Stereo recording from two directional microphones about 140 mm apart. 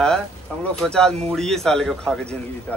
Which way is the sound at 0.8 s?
5° left (ahead or behind).